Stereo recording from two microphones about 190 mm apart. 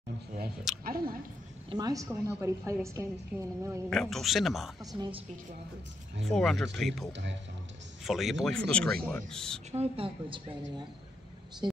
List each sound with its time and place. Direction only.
0.8 s speech: 50° right (ahead or behind)
1.7 s a woman's voice: 20° right (ahead or behind)
3.9 s speech: centre (ahead or behind)
6.2 s speech: centre (ahead or behind)
7.1 s speech: 70° right (ahead or behind)
8.0 s speech: centre (ahead or behind)
9.7 s a woman's voice: 30° right (ahead or behind)